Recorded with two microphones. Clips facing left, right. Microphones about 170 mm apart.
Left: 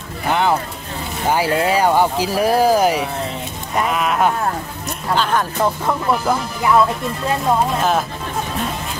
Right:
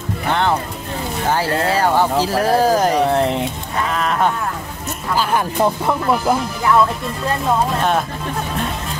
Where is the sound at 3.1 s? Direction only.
75° right (ahead or behind).